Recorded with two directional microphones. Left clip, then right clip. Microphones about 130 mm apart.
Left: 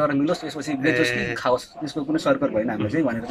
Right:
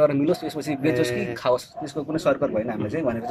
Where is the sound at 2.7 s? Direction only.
25° right (ahead or behind).